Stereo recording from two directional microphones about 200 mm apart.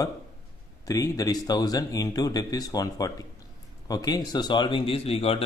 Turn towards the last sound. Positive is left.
turn(degrees=30)  # may be behind; listen again after turning